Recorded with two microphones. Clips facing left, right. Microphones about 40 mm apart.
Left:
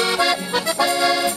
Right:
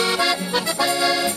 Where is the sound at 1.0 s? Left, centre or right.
Left.